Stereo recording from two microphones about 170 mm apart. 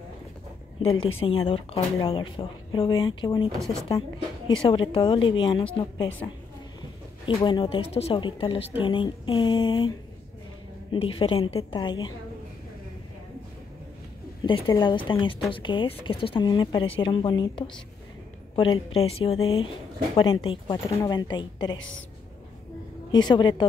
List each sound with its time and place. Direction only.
0.7 s speech: 35° left (ahead or behind)
4.5 s speech: 30° left (ahead or behind)
7.2 s speech: 30° left (ahead or behind)
14.4 s speech: 25° left (ahead or behind)
21.7 s a woman's voice: 90° left
23.1 s speech: 25° left (ahead or behind)